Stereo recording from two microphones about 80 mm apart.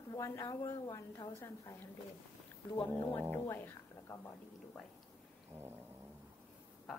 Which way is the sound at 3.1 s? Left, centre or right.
Left.